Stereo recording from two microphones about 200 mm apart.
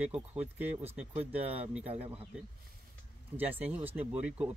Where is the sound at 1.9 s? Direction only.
30° right (ahead or behind).